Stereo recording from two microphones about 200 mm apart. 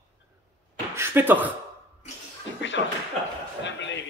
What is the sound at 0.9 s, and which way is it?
Speech, 10° right (ahead or behind).